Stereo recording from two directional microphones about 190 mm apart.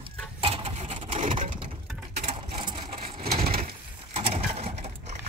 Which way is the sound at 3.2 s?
55° right (ahead or behind).